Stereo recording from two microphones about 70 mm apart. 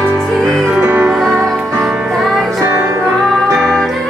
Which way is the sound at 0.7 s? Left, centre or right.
Right.